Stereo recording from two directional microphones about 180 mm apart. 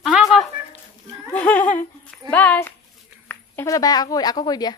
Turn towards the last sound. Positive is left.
turn(degrees=20)  # may be behind; listen again after turning